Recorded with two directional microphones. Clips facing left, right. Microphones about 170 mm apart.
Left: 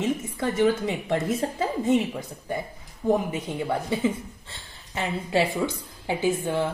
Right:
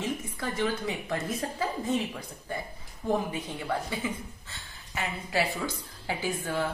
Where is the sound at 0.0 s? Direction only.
25° left (ahead or behind).